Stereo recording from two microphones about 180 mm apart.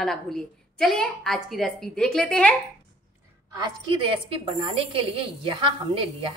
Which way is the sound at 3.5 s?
25° right (ahead or behind).